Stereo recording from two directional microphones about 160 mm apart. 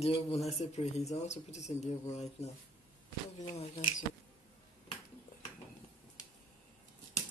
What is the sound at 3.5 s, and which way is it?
Speech, 45° left (ahead or behind).